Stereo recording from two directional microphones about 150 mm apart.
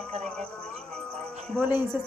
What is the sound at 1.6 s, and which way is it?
Speech, 15° right (ahead or behind).